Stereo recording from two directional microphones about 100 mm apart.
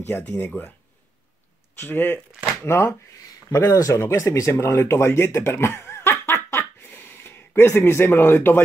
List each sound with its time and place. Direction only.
0.1 s speech: 15° left (ahead or behind)
1.8 s speech: 20° left (ahead or behind)
6.8 s a sound: 20° left (ahead or behind)